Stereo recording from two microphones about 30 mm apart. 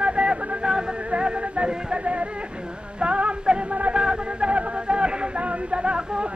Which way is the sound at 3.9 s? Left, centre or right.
Right.